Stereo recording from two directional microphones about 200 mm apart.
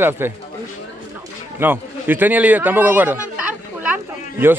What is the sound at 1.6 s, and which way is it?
A man's voice, 10° right (ahead or behind).